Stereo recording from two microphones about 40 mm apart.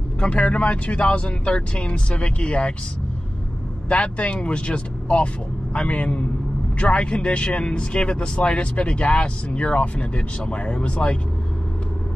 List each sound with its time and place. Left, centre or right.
0.2 s speech: left
3.9 s speech: left